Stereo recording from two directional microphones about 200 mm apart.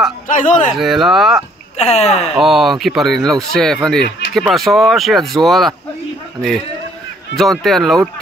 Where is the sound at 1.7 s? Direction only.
35° left (ahead or behind).